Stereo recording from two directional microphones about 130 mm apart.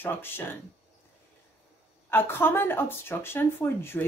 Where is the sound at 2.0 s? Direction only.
15° left (ahead or behind).